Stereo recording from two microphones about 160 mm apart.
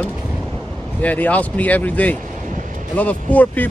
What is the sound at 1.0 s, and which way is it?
Speech, 10° left (ahead or behind).